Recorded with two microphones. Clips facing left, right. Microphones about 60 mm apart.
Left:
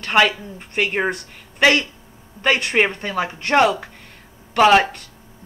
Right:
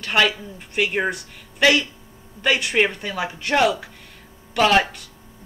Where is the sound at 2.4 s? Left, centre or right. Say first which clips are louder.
Left 2 dB; left.